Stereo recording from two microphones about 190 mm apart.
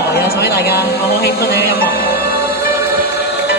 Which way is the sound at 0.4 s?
55° left (ahead or behind).